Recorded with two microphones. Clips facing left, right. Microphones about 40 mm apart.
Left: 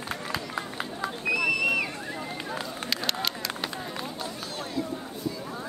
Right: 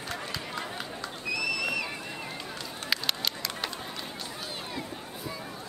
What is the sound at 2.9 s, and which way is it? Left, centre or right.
Run, centre.